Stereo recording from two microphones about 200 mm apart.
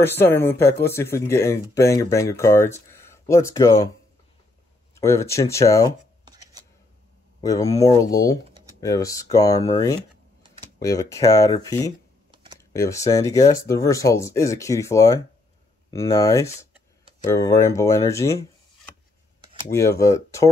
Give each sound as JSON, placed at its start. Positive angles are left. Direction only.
{"t": 0.0, "sound": "speech", "side_deg": 10}
{"t": 5.0, "sound": "speech", "side_deg": 15}
{"t": 7.4, "sound": "speech", "side_deg": 15}
{"t": 10.8, "sound": "speech", "side_deg": 15}
{"t": 19.7, "sound": "speech", "side_deg": 15}